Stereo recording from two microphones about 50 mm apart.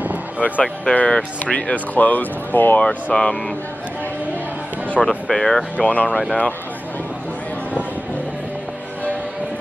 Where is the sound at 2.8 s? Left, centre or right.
Centre.